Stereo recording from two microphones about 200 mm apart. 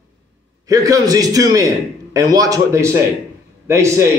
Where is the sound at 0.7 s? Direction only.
15° right (ahead or behind).